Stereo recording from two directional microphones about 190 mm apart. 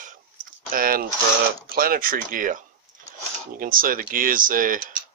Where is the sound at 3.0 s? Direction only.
45° right (ahead or behind).